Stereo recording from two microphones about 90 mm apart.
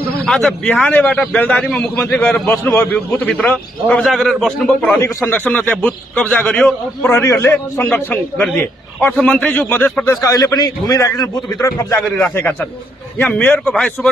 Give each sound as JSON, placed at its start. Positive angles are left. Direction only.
{"t": 0.2, "sound": "speech", "side_deg": 5}
{"t": 0.7, "sound": "a man's voice", "side_deg": 15}
{"t": 4.1, "sound": "a man's voice", "side_deg": 5}
{"t": 5.0, "sound": "a man's voice", "side_deg": 25}
{"t": 7.2, "sound": "a man's voice", "side_deg": 30}
{"t": 7.9, "sound": "a man's voice", "side_deg": 10}
{"t": 10.2, "sound": "a man's voice", "side_deg": 45}
{"t": 13.2, "sound": "a man's voice", "side_deg": 15}
{"t": 13.7, "sound": "a man's voice", "side_deg": 5}